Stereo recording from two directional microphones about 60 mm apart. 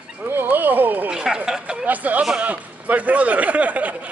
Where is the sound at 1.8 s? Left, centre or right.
Right.